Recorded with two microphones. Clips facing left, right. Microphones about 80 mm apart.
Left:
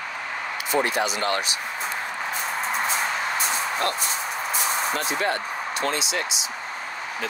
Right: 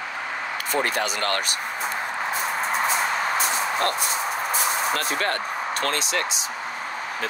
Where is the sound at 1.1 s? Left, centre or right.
Right.